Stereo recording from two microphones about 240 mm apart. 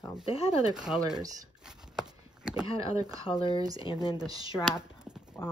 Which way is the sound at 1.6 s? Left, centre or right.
Centre.